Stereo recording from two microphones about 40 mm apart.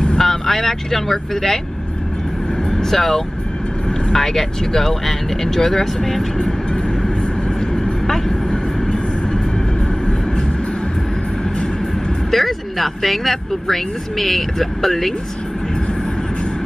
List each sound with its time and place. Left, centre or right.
0.2 s speech: centre
2.7 s vehicle: centre
4.1 s speech: centre
7.7 s vehicle: centre
12.3 s speech: centre